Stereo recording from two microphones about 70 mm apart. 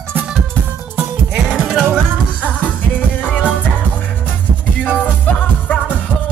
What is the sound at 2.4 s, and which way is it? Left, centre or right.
Music, left.